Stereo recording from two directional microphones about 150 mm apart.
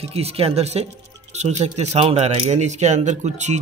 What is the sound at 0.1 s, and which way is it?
Speech, 40° right (ahead or behind).